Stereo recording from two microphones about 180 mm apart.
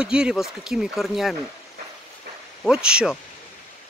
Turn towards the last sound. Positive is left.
turn(degrees=-5)  # may be behind; listen again after turning